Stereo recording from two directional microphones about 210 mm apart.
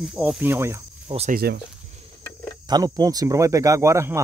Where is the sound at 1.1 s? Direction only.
30° right (ahead or behind).